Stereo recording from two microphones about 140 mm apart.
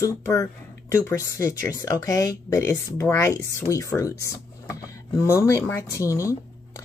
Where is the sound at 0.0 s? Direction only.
20° left (ahead or behind).